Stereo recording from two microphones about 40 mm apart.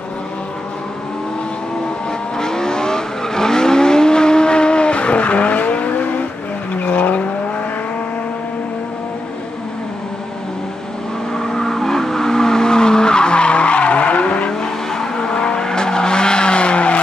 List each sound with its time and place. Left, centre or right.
2.3 s vehicle: centre; by 7.2 s left
11.3 s vehicle: centre; by 14.5 s left
14.6 s vehicle: centre; by 17.0 s left